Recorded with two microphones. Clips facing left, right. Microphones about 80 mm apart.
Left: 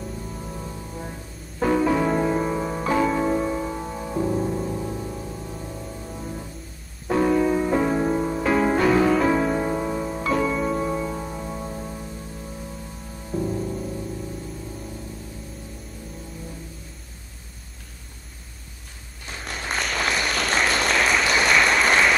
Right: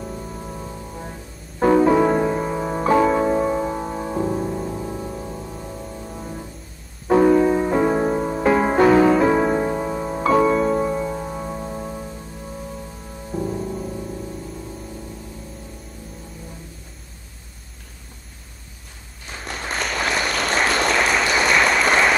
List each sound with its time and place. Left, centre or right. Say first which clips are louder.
1.6 s music: right 5 dB; right
2.2 s music: right 1 dB; centre
2.8 s music: right 6 dB; right
4.4 s music: even; centre
4.9 s music: right 2 dB; right
7.1 s music: right 5 dB; right
10.0 s music: right 10 dB; right
10.7 s music: right 4 dB; right
13.3 s music: even; centre
19.4 s applause: right 2 dB; centre